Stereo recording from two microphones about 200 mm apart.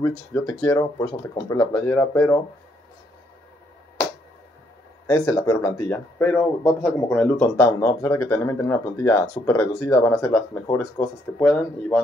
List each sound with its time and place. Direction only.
0.0 s speech: 15° left (ahead or behind)
5.0 s speech: 15° left (ahead or behind)